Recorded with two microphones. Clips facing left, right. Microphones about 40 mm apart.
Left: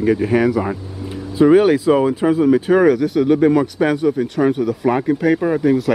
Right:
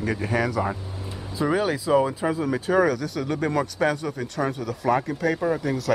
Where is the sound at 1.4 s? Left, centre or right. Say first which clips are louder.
Left 12 dB; left.